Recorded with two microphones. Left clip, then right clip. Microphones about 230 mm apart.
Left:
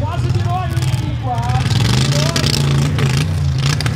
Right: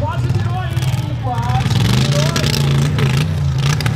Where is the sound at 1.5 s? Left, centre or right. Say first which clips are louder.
Even; centre.